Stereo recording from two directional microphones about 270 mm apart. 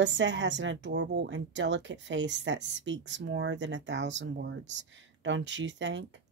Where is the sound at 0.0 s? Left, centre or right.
Right.